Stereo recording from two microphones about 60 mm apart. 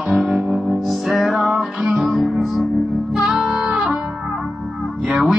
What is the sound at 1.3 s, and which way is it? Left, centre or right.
Music, right.